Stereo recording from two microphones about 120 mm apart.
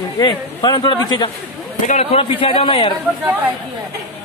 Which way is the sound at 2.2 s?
45° left (ahead or behind).